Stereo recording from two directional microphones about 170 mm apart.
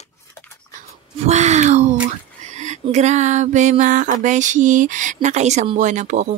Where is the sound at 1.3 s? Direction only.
40° right (ahead or behind).